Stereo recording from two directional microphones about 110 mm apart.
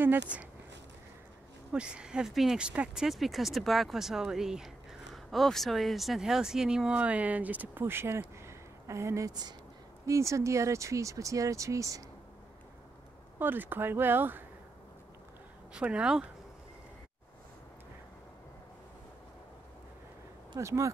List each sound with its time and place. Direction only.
0.0 s speech: 15° right (ahead or behind)
1.7 s speech: 10° right (ahead or behind); by 12.0 s 30° right (ahead or behind)
13.4 s speech: 20° right (ahead or behind)
15.7 s speech: 10° right (ahead or behind)
20.5 s speech: 30° right (ahead or behind)